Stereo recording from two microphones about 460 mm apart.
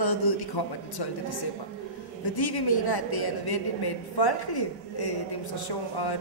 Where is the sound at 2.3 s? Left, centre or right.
Left.